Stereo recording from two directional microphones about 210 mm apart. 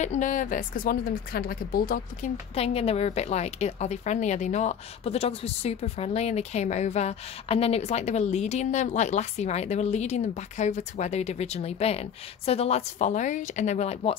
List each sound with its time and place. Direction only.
0.0 s a woman's voice: 35° left (ahead or behind)
2.5 s a woman's voice: 30° left (ahead or behind)